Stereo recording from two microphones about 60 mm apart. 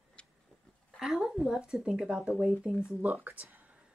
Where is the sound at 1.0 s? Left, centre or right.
Centre.